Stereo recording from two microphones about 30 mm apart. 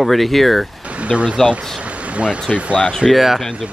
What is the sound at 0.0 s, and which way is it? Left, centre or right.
Speech, centre.